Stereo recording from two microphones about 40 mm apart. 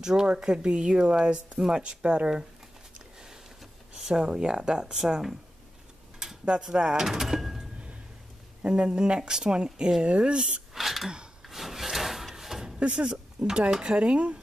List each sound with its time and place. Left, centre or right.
0.0 s speech: centre
4.0 s speech: centre
6.6 s speech: centre
7.1 s door: centre
8.6 s speech: right
10.7 s a sound: centre
11.4 s wood: centre
12.7 s speech: right
13.5 s speech: centre